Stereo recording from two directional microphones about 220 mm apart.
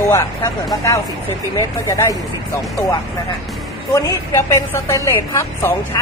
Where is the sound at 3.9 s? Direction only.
15° left (ahead or behind).